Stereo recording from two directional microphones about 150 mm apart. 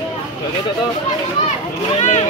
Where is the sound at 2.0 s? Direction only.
50° left (ahead or behind).